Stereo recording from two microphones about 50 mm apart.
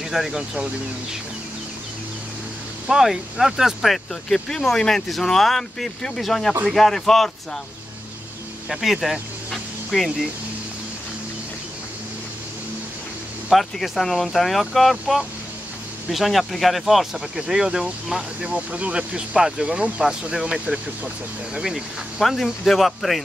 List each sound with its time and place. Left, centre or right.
0.1 s speech: centre
2.9 s speech: centre
8.6 s a sound: centre
13.5 s speech: centre
18.5 s speech: right
21.5 s speech: centre